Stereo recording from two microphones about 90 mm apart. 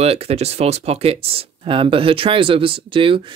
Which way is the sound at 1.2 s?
90° right.